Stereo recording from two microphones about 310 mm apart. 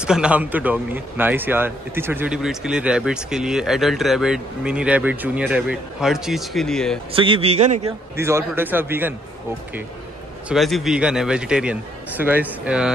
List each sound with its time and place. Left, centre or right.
0.0 s a man's voice: centre
7.1 s a man's voice: centre
8.2 s a man's voice: centre
10.5 s a man's voice: centre